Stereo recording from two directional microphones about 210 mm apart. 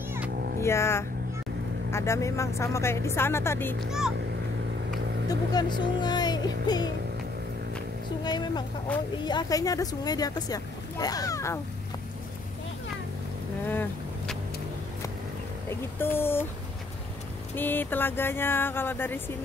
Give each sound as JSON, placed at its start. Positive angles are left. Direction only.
{"t": 0.6, "sound": "speech", "side_deg": 15}
{"t": 5.3, "sound": "speech", "side_deg": 20}
{"t": 6.0, "sound": "music", "side_deg": 20}
{"t": 8.2, "sound": "speech", "side_deg": 20}
{"t": 13.7, "sound": "vehicle", "side_deg": 10}
{"t": 16.0, "sound": "speech", "side_deg": 10}
{"t": 17.6, "sound": "speech", "side_deg": 10}